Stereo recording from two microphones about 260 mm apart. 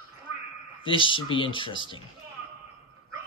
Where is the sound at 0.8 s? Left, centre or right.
Centre.